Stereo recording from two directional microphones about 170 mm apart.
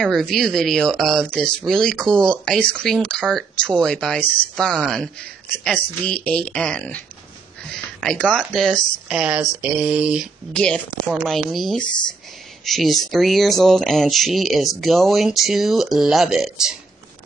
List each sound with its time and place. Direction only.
0.0 s speech: centre (ahead or behind)